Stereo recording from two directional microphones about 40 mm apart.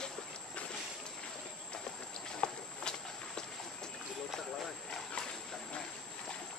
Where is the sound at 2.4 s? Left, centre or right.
Left.